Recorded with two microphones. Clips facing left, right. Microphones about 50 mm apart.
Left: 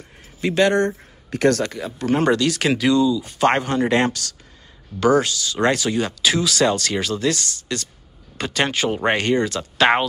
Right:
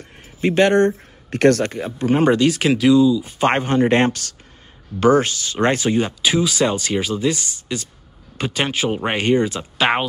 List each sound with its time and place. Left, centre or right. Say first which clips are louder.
0.4 s speech: right 3 dB; right
2.0 s speech: right 3 dB; centre
2.6 s speech: right 4 dB; centre